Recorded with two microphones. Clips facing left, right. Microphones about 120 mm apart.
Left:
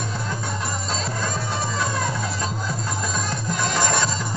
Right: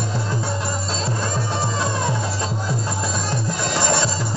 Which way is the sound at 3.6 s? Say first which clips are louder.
Right 1 dB; 30° right (ahead or behind).